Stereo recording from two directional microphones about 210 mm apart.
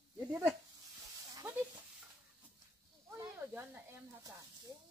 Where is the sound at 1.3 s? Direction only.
10° right (ahead or behind).